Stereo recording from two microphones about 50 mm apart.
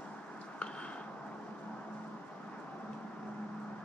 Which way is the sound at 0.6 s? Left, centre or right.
Left.